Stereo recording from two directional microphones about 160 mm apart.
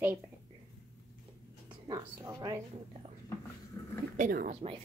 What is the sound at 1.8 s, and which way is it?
Speech, 25° right (ahead or behind).